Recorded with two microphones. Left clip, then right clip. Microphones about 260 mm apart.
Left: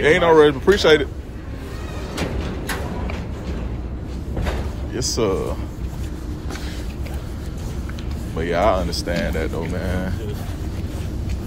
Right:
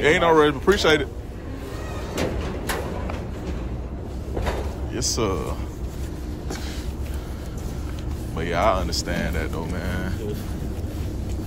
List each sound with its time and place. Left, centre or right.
0.0 s speech: centre
2.1 s vehicle: right
4.9 s speech: centre
8.4 s speech: centre